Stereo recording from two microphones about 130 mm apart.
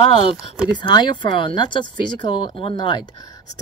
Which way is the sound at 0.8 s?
35° left (ahead or behind).